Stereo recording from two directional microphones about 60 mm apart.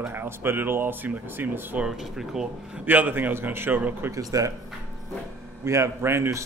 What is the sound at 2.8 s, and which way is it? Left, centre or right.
Speech, right.